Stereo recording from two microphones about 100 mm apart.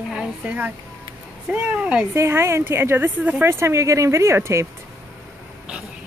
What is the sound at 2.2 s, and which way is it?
A woman's voice, 25° right (ahead or behind).